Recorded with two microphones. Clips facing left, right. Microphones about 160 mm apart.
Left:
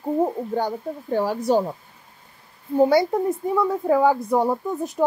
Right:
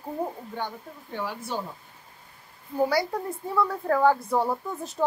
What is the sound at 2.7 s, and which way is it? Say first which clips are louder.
A woman's voice: left 7 dB; 25° left (ahead or behind).